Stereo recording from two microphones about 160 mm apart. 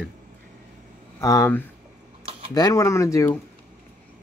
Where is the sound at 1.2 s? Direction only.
20° left (ahead or behind).